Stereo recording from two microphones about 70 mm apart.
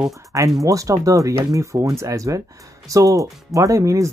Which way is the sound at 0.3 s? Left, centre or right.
Right.